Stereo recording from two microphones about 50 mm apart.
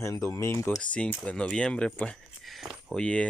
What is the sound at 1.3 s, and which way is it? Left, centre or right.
Speech, centre.